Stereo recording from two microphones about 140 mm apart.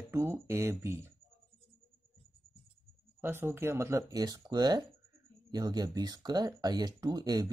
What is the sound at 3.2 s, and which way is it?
Speech, 15° right (ahead or behind).